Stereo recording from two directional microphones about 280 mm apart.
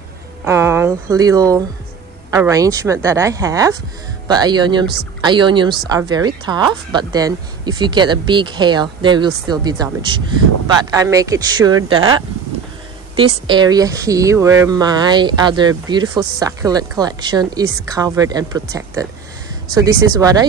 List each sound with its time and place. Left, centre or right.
0.5 s a woman's voice: centre
13.5 s a woman's voice: centre